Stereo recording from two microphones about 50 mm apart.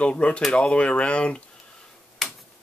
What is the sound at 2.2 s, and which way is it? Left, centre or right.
Tick-tock, centre.